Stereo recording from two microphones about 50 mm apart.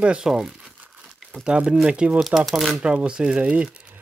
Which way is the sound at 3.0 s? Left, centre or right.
Centre.